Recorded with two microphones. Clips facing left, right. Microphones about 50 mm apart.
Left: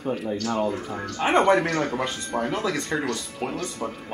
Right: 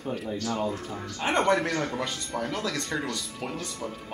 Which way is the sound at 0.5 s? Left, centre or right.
Left.